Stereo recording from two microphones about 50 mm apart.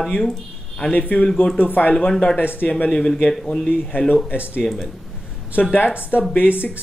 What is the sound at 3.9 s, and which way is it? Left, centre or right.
Speech, left.